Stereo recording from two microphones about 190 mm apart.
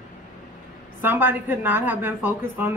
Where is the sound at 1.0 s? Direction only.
10° right (ahead or behind).